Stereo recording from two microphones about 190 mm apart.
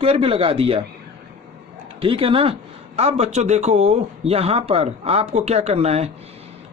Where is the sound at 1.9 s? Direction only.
30° right (ahead or behind).